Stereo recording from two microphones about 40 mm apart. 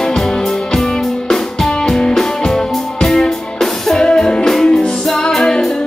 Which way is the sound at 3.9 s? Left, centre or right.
Centre.